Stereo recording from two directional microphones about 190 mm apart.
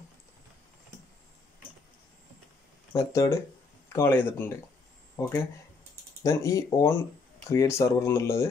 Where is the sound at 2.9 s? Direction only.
15° left (ahead or behind).